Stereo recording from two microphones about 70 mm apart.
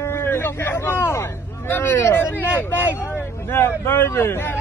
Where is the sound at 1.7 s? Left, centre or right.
Left.